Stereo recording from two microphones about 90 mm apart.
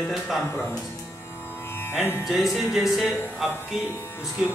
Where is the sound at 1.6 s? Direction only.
25° left (ahead or behind).